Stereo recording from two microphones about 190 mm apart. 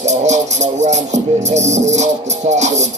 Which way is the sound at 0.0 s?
35° right (ahead or behind).